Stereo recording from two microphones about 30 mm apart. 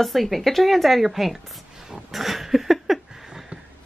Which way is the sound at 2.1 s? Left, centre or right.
Centre.